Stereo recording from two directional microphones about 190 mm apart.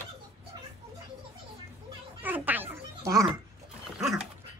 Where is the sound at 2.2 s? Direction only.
10° right (ahead or behind).